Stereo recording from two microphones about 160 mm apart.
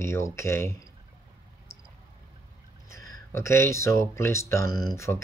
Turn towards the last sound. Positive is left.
turn(degrees=15)  # may be behind; listen again after turning